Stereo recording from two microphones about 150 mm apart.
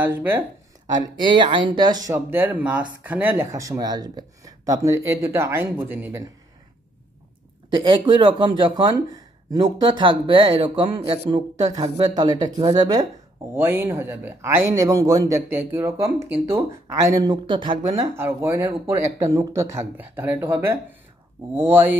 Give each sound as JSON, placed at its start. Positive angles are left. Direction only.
{"t": 0.0, "sound": "speech", "side_deg": -15}
{"t": 0.8, "sound": "speech", "side_deg": -30}
{"t": 2.1, "sound": "speech", "side_deg": -10}
{"t": 7.7, "sound": "speech", "side_deg": -30}
{"t": 13.6, "sound": "speech", "side_deg": -15}